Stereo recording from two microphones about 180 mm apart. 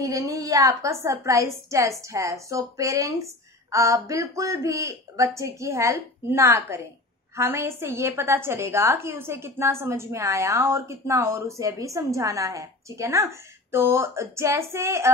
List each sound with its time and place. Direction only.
0.0 s a woman's voice: 20° right (ahead or behind)